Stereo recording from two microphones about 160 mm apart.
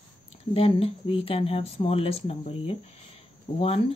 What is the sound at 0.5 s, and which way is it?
Speech, 35° left (ahead or behind).